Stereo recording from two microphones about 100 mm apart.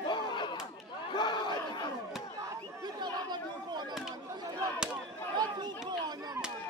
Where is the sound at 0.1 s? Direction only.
50° left (ahead or behind).